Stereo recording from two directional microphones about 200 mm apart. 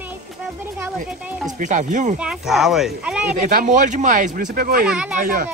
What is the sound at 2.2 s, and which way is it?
Speech, 5° right (ahead or behind).